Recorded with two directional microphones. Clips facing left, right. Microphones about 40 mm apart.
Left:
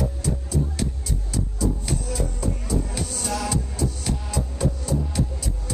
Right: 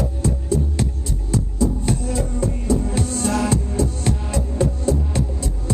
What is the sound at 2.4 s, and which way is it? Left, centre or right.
Music, right.